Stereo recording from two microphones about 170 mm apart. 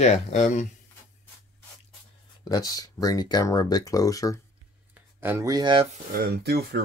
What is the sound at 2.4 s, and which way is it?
Speech, 20° left (ahead or behind).